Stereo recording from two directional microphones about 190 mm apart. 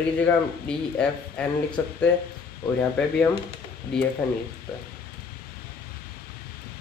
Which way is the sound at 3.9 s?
5° left (ahead or behind).